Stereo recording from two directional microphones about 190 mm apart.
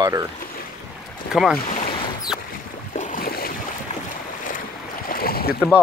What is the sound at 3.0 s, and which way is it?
Boat, 45° left (ahead or behind).